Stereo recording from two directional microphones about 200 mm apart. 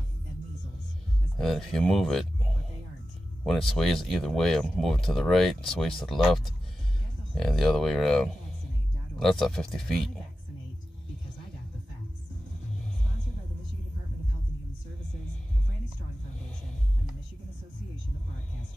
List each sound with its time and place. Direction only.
1.4 s speech: centre (ahead or behind)
3.4 s speech: centre (ahead or behind)